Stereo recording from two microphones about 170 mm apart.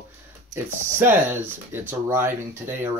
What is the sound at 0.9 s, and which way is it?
Speech, 10° right (ahead or behind).